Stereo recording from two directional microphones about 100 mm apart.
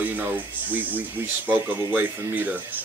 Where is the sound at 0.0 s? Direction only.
20° right (ahead or behind).